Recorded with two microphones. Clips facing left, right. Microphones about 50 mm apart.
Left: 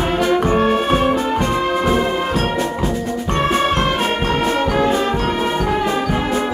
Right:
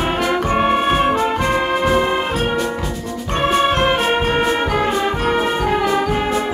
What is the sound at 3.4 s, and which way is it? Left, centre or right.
Music, right.